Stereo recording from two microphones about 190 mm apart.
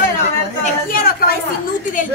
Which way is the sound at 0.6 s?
50° left (ahead or behind).